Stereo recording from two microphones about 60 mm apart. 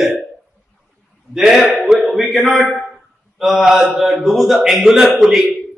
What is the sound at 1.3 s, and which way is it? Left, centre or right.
A man's voice, centre.